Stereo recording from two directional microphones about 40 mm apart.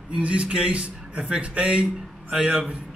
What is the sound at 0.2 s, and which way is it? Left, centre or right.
A man's voice, right.